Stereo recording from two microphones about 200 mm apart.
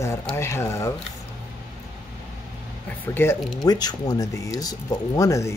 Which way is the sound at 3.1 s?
15° left (ahead or behind).